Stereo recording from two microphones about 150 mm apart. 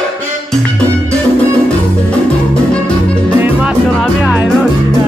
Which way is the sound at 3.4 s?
10° right (ahead or behind).